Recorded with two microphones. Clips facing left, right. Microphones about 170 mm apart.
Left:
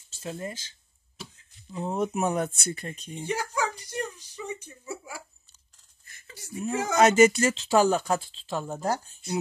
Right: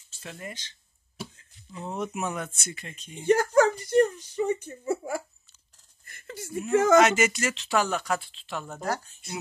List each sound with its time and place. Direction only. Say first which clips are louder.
0.1 s speech: left 5 dB; 30° left (ahead or behind)
1.8 s speech: left 4 dB; 35° left (ahead or behind)
3.3 s speech: right 10 dB; 50° right (ahead or behind)
6.0 s a sound: right 7 dB; 55° right (ahead or behind)
6.7 s speech: right 10 dB; 55° right (ahead or behind)
7.1 s speech: left 6 dB; 35° left (ahead or behind)